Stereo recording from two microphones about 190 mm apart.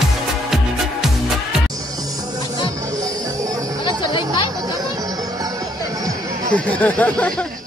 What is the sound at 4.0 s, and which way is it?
Music, 25° left (ahead or behind).